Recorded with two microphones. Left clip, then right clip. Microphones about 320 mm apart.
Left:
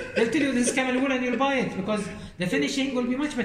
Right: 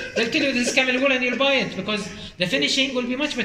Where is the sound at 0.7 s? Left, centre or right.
Centre.